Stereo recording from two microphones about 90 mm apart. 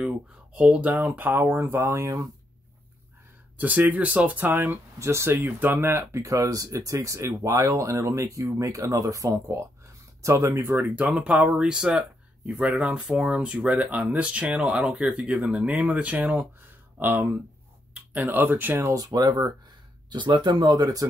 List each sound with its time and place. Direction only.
0.0 s speech: 15° right (ahead or behind); by 2.2 s 35° right (ahead or behind)
3.5 s speech: 20° right (ahead or behind); by 21.1 s 45° right (ahead or behind)